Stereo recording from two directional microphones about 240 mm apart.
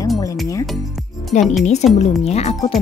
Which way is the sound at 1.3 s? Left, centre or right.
Left.